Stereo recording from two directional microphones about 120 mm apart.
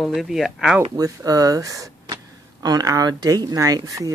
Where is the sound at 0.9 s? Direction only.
30° right (ahead or behind).